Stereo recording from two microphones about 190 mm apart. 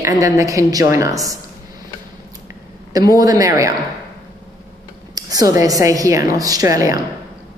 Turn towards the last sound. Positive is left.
turn(degrees=-20)  # may be behind; listen again after turning